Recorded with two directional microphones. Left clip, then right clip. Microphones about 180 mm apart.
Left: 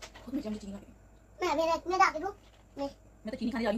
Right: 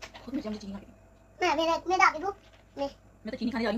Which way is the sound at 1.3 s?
35° right (ahead or behind).